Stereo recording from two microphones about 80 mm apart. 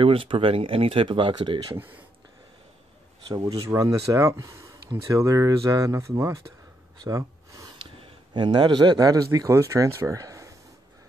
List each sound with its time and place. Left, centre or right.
0.0 s speech: right
3.3 s speech: right
7.1 s gasp: right
8.3 s a man's voice: right
9.5 s speech: right